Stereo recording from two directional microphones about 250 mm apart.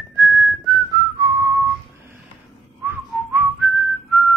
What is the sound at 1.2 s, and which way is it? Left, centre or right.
Whistling, centre.